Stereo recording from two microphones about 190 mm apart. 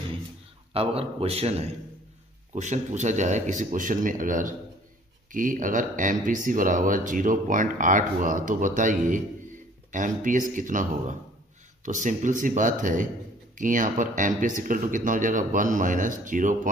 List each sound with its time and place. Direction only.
0.7 s speech: 30° right (ahead or behind)